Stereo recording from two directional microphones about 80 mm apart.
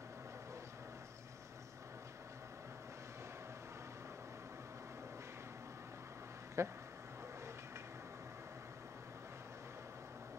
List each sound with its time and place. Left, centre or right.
6.6 s speech: right